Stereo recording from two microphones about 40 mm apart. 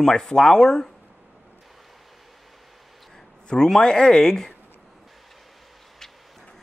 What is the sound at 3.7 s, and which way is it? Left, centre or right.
Speech, centre.